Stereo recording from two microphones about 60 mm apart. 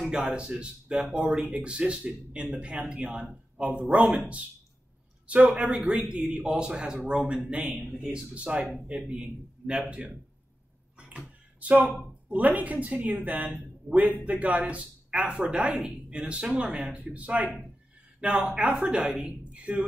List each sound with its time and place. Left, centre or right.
0.1 s speech: centre
5.2 s speech: right
11.0 s a sound: right
12.3 s speech: right